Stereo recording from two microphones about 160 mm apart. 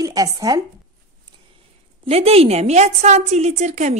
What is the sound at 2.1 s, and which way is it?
A woman's voice, 40° right (ahead or behind).